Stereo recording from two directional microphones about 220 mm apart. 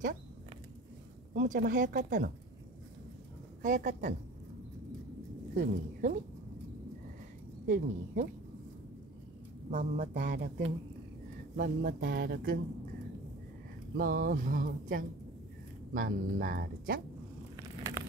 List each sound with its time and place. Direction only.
1.3 s speech: 35° right (ahead or behind)
3.6 s speech: 35° right (ahead or behind)
5.6 s speech: 40° right (ahead or behind)
7.6 s speech: 40° right (ahead or behind)
9.7 s speech: 35° right (ahead or behind)
13.9 s speech: 40° right (ahead or behind)
17.6 s a sound: 15° right (ahead or behind)